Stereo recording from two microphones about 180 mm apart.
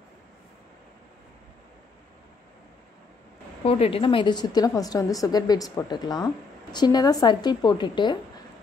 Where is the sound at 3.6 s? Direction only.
35° left (ahead or behind).